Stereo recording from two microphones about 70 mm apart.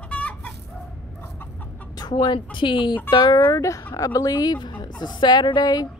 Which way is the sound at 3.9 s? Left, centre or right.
Left.